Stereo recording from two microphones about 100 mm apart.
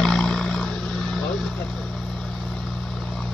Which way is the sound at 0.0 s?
5° left (ahead or behind).